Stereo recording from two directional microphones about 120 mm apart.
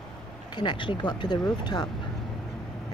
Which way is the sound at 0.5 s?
40° left (ahead or behind).